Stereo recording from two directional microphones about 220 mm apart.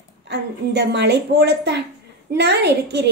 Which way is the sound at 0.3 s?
50° right (ahead or behind).